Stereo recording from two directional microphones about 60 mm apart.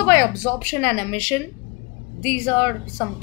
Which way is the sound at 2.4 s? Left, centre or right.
Left.